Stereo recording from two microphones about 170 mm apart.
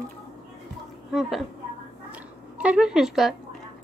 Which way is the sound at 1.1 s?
Centre (ahead or behind).